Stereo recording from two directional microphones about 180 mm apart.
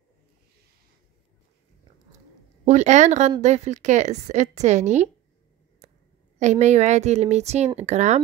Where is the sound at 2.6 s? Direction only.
40° right (ahead or behind).